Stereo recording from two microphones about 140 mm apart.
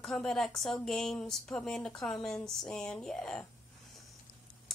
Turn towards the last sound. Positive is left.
turn(degrees=5)  # may be behind; listen again after turning